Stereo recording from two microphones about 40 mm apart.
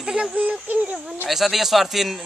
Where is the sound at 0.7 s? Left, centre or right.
Right.